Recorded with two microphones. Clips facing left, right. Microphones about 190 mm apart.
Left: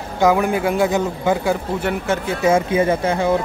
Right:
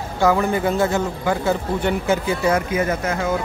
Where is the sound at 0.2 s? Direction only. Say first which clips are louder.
Left 2 dB; 15° left (ahead or behind).